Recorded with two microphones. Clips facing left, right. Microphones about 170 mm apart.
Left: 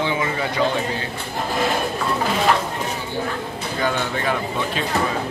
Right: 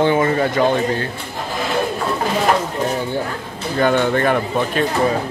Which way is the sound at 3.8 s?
55° right (ahead or behind).